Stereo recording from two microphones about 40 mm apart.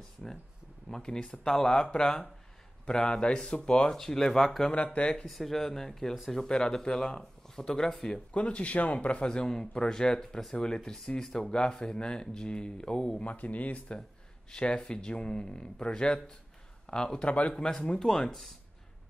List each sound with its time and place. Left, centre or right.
0.8 s speech: centre
3.9 s a man's voice: centre
4.6 s speech: left
5.2 s a man's voice: centre
8.1 s speech: left
9.3 s a man's voice: centre
11.5 s speech: left
13.2 s a man's voice: left; by 18.5 s centre